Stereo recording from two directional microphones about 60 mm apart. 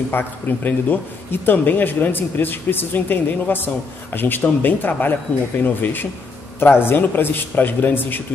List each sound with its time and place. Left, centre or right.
0.1 s a man's voice: left